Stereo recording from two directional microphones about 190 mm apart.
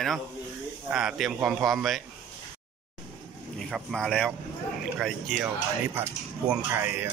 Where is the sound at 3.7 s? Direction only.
5° left (ahead or behind).